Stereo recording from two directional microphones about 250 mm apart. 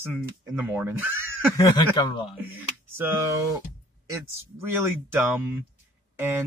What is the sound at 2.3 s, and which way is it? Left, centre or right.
Speech, centre.